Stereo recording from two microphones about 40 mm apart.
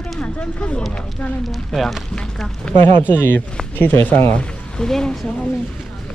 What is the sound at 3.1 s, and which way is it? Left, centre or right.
Speech, left.